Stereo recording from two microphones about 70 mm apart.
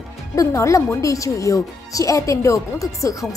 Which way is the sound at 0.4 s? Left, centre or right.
Left.